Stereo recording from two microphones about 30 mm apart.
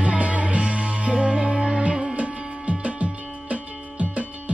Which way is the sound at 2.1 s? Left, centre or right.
Right.